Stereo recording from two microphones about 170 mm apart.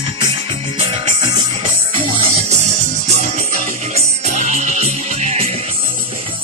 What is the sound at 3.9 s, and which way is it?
Music, 45° right (ahead or behind).